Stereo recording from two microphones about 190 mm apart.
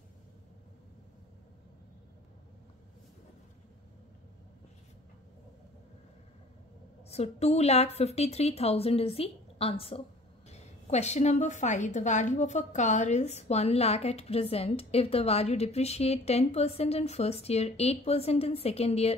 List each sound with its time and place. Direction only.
7.1 s a woman's voice: 35° left (ahead or behind)